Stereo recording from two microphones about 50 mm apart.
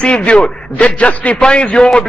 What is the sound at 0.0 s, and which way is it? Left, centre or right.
A man's voice, centre.